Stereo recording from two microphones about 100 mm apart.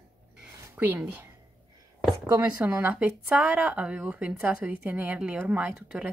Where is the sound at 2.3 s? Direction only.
20° right (ahead or behind).